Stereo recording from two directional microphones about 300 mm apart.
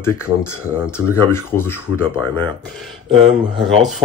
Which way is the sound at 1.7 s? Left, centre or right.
Left.